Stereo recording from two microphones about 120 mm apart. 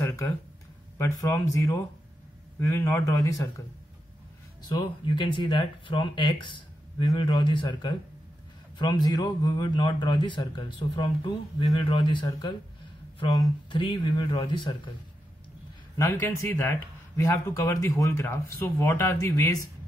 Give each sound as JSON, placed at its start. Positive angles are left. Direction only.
{"t": 0.0, "sound": "a sound", "side_deg": 25}
{"t": 0.9, "sound": "speech", "side_deg": 25}
{"t": 4.6, "sound": "a man's voice", "side_deg": 35}
{"t": 13.7, "sound": "a man's voice", "side_deg": 45}
{"t": 16.0, "sound": "speech", "side_deg": 20}